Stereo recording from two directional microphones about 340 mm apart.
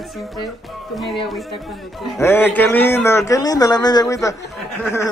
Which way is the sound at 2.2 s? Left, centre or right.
Centre.